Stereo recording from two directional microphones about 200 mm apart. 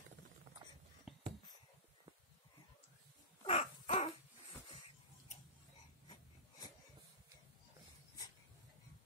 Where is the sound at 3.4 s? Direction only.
35° left (ahead or behind).